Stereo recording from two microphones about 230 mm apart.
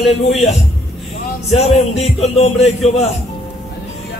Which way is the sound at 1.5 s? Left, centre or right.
Left.